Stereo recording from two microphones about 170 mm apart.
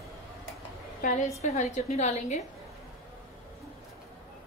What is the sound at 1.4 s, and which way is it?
A woman's voice, 40° left (ahead or behind).